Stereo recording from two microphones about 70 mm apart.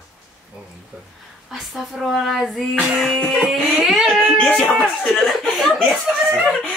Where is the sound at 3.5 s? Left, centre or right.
Centre.